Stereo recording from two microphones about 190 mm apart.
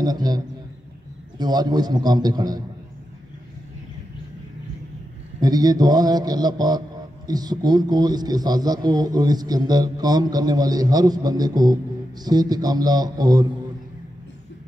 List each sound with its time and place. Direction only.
0.0 s a man's voice: 20° right (ahead or behind)
1.4 s a man's voice: 20° right (ahead or behind)
5.4 s a man's voice: 20° right (ahead or behind)